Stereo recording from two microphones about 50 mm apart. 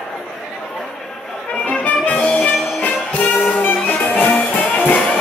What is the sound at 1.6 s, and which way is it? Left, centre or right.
Music, left.